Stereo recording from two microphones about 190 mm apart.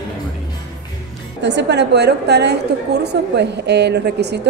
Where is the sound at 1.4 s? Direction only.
65° right (ahead or behind).